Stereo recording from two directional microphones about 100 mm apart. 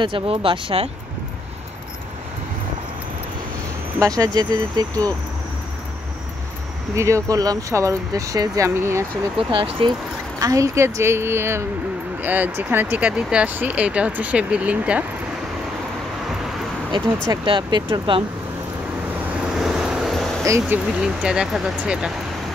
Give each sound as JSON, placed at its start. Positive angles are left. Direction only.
{"t": 0.0, "sound": "speech", "side_deg": -65}
{"t": 4.2, "sound": "speech", "side_deg": -40}
{"t": 7.0, "sound": "speech", "side_deg": -30}
{"t": 9.4, "sound": "speech", "side_deg": -60}
{"t": 10.4, "sound": "a woman's voice", "side_deg": -35}
{"t": 17.5, "sound": "speech", "side_deg": -50}
{"t": 19.3, "sound": "vehicle", "side_deg": -5}
{"t": 20.6, "sound": "speech", "side_deg": -10}